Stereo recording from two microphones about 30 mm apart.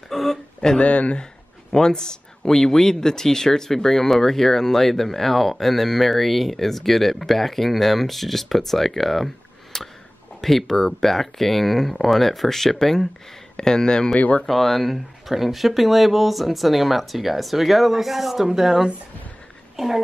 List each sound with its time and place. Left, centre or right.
0.1 s a sound: centre
0.7 s speech: left
1.7 s speech: left; by 9.3 s centre
9.7 s a sound: centre
10.4 s speech: centre
13.6 s speech: left
14.5 s speech: centre
19.8 s speech: centre